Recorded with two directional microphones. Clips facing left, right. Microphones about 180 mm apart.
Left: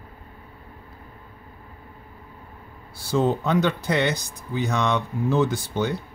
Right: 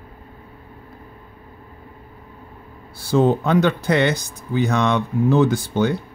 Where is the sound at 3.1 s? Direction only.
60° right (ahead or behind).